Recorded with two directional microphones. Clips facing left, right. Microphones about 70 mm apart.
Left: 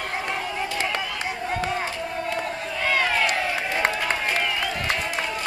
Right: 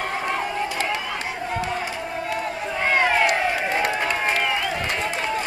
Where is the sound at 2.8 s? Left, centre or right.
Right.